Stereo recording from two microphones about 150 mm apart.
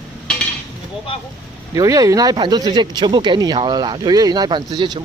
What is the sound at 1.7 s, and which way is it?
Speech, 25° right (ahead or behind).